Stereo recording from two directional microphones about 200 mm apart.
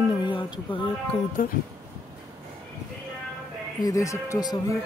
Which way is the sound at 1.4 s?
45° left (ahead or behind).